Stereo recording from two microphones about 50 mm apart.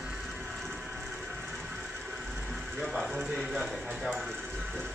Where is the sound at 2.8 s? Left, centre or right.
Centre.